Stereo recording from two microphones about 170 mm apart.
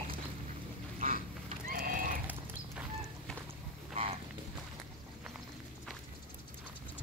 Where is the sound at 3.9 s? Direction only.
35° right (ahead or behind).